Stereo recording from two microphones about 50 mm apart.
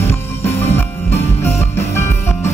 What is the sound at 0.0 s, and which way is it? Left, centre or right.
Music, left.